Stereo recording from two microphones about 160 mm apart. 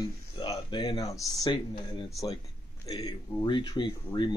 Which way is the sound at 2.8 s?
25° left (ahead or behind).